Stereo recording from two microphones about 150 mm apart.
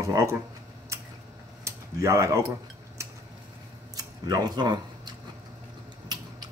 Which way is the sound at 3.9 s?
25° right (ahead or behind).